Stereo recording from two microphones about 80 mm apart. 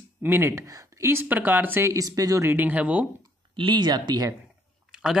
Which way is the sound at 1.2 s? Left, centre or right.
Right.